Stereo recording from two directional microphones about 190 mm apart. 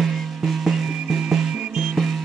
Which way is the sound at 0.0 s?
Centre (ahead or behind).